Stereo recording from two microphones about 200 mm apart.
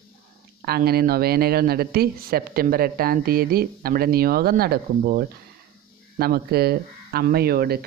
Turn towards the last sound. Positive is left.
turn(degrees=-50)  # may be behind; listen again after turning